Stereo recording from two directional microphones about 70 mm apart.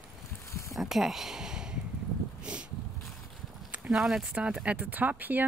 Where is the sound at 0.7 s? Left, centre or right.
Centre.